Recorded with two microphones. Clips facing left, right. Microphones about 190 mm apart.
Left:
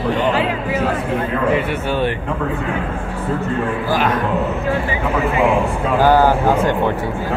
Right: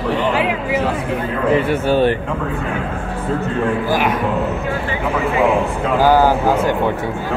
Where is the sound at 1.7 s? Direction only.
35° right (ahead or behind).